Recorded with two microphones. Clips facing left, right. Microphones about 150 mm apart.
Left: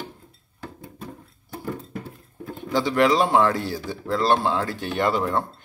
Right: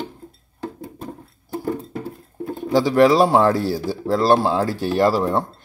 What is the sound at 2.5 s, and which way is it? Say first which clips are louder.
Speech: right 6 dB; 35° right (ahead or behind).